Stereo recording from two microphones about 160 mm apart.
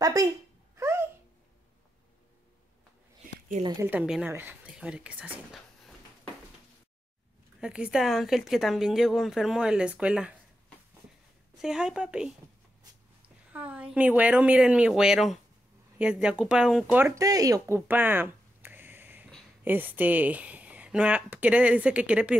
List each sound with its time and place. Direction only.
0.0 s a child's voice: 20° right (ahead or behind)
0.7 s babbling: 15° right (ahead or behind)
3.8 s speech: 10° right (ahead or behind)
7.6 s a woman's voice: 5° right (ahead or behind)
11.6 s a woman's voice: 5° right (ahead or behind)
13.5 s speech: 10° right (ahead or behind)